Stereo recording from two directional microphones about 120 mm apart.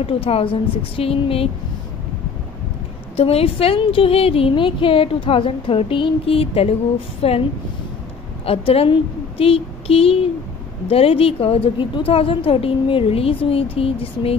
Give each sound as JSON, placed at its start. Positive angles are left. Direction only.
{"t": 0.0, "sound": "speech", "side_deg": 50}
{"t": 3.2, "sound": "speech", "side_deg": 55}
{"t": 8.5, "sound": "a woman's voice", "side_deg": 50}